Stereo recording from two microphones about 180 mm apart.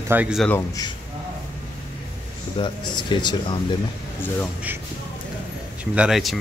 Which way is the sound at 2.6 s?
25° left (ahead or behind).